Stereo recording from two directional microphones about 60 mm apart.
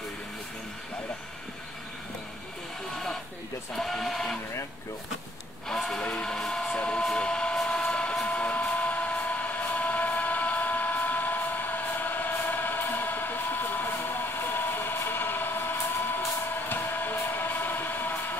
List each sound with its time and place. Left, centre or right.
3.7 s speech: centre
5.7 s speech: centre
6.3 s a sound: centre
7.5 s train: centre
8.3 s a sound: left
14.3 s vehicle: left
16.6 s vehicle: left